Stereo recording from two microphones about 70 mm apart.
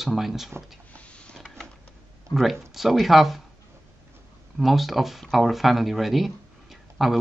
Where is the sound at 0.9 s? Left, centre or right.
Centre.